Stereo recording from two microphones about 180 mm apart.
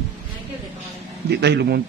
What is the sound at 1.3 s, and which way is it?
Speech, 65° right (ahead or behind).